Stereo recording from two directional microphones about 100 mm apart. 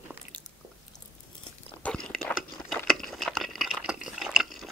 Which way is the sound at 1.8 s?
10° left (ahead or behind).